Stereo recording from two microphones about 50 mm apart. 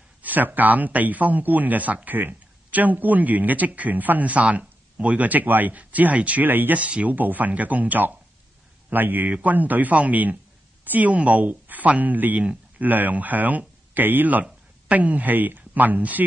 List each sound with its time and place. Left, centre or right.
0.2 s speech: right
6.4 s speech: right
6.8 s speech: right